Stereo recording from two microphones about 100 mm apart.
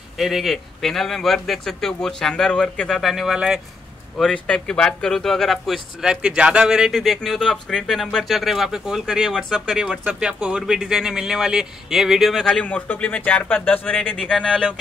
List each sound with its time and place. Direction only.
0.2 s speech: centre (ahead or behind)
4.2 s speech: 10° left (ahead or behind)
12.6 s speech: 15° left (ahead or behind)